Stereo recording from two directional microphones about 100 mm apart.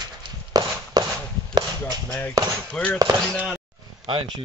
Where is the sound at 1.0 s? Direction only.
40° right (ahead or behind).